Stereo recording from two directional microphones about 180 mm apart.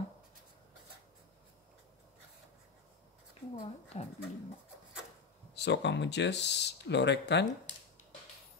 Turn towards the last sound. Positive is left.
turn(degrees=75)  # may be behind; listen again after turning